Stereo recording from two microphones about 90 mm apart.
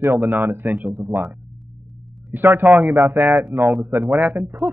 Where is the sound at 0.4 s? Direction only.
20° right (ahead or behind).